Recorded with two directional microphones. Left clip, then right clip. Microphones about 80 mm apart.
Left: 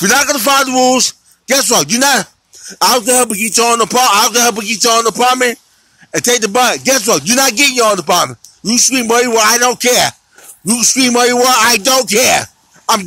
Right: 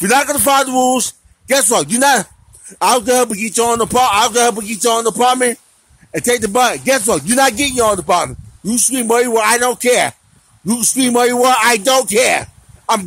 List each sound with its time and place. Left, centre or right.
0.2 s a man's voice: right
3.1 s music: right
6.8 s speech: right
8.7 s music: right
11.1 s speech: right
11.3 s music: right